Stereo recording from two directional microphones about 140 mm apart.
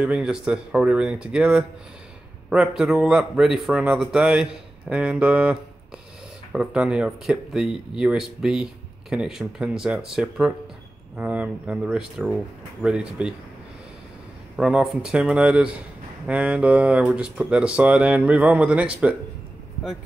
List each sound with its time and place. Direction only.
0.0 s speech: 5° right (ahead or behind)
14.6 s speech: 5° right (ahead or behind)